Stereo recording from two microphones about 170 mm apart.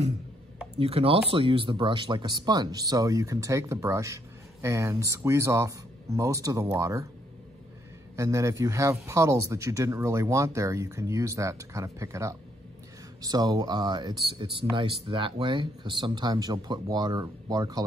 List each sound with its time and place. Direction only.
0.7 s speech: 35° right (ahead or behind); by 7.1 s 20° right (ahead or behind)
8.2 s speech: 15° right (ahead or behind)